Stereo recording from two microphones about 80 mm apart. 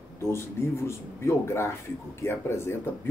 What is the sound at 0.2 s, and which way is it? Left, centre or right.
Speech, left.